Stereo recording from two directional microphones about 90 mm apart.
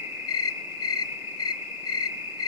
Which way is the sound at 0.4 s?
45° left (ahead or behind).